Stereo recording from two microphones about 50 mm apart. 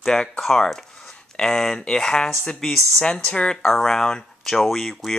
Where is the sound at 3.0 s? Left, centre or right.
Centre.